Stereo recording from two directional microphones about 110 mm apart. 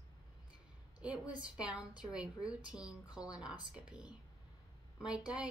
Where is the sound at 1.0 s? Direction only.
10° right (ahead or behind).